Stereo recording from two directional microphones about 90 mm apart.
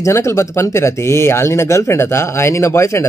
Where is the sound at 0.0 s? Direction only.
30° left (ahead or behind).